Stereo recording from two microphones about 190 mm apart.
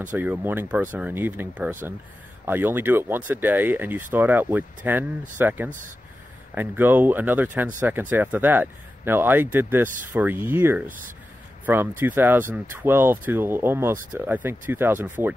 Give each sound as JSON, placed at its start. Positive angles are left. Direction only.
{"t": 0.1, "sound": "speech", "side_deg": -10}